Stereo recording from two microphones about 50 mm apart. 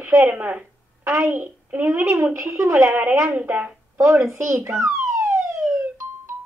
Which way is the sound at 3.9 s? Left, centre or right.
Right.